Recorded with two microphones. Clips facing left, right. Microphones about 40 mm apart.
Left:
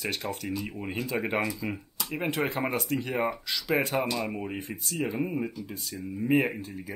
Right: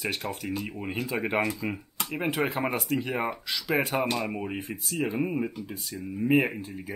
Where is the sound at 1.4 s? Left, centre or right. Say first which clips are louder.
Right 2 dB; right.